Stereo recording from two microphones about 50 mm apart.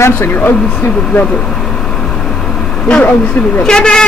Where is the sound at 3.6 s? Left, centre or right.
Centre.